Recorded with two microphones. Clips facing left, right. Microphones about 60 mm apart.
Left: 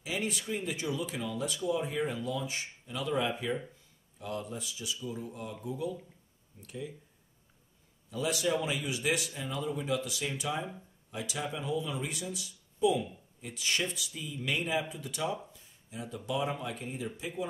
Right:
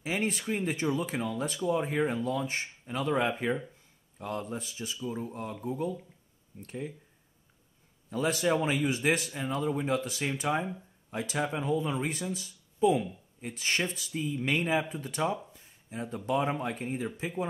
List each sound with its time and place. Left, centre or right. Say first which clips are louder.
0.0 s speech: right 4 dB; right
8.1 s speech: right 3 dB; right
15.5 s a sound: right 4 dB; right
16.3 s speech: right 4 dB; right